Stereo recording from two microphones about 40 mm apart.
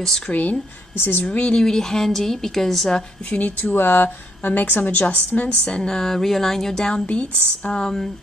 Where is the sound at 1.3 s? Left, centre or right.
Left.